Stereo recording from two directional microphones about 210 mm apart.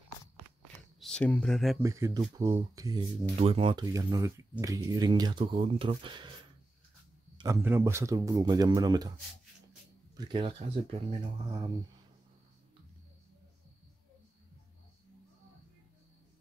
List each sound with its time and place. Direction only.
0.9 s speech: 5° left (ahead or behind)
1.8 s speech: 15° right (ahead or behind)
7.3 s speech: 15° right (ahead or behind)
10.1 s speech: 20° right (ahead or behind)